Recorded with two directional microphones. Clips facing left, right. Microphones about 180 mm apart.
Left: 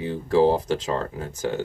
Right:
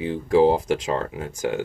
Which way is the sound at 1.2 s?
35° left (ahead or behind).